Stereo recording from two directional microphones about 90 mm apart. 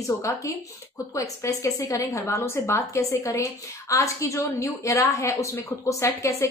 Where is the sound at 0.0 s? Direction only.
35° left (ahead or behind).